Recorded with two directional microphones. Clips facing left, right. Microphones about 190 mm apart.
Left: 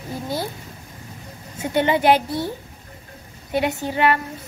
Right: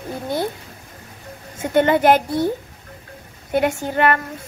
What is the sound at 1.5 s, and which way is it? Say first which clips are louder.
Speech: right 3 dB; 50° right (ahead or behind).